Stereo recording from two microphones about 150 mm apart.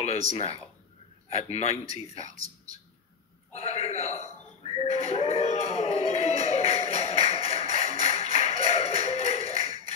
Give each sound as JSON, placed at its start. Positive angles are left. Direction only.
{"t": 0.0, "sound": "a man's voice", "side_deg": 45}
{"t": 3.5, "sound": "a man's voice", "side_deg": 45}
{"t": 4.6, "sound": "a sound", "side_deg": 40}